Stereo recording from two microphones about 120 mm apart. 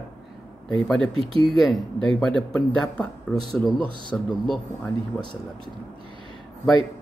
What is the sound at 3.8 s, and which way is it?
Speech, 45° right (ahead or behind).